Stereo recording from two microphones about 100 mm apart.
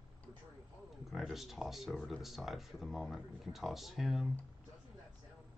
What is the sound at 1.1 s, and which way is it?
Speech, centre (ahead or behind).